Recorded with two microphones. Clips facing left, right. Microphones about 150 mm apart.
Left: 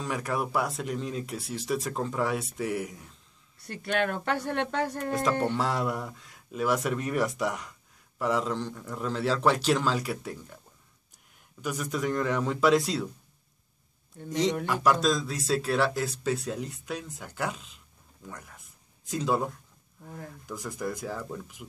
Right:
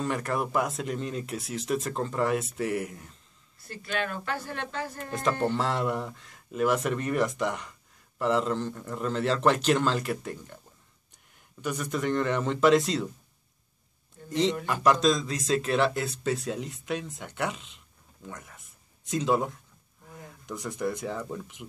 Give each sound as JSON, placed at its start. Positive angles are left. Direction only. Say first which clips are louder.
{"t": 0.0, "sound": "speech", "louder": "right 2 dB", "side_deg": 0}
{"t": 3.7, "sound": "speech", "louder": "left 4 dB", "side_deg": 60}
{"t": 5.4, "sound": "speech", "louder": "right 1 dB", "side_deg": 0}
{"t": 11.6, "sound": "speech", "louder": "right 1 dB", "side_deg": 5}
{"t": 14.7, "sound": "speech", "louder": "right 3 dB", "side_deg": 5}
{"t": 18.2, "sound": "a sound", "louder": "right 1 dB", "side_deg": 0}
{"t": 20.4, "sound": "speech", "louder": "right 3 dB", "side_deg": 5}